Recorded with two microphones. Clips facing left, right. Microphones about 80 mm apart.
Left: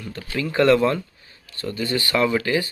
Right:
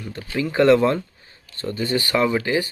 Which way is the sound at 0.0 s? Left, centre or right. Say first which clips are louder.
Right 2 dB; right.